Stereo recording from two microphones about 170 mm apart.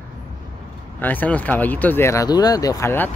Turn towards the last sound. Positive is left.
turn(degrees=15)  # may be behind; listen again after turning